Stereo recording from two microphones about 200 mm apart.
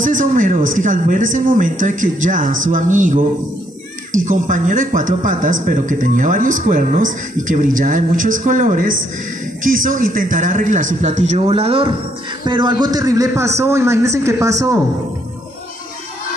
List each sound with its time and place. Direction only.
0.0 s speech: 40° right (ahead or behind)
9.8 s a man's voice: 45° right (ahead or behind); by 14.8 s 15° right (ahead or behind)